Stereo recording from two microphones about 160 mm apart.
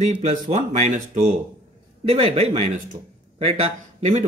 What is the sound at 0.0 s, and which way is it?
A man's voice, 45° right (ahead or behind).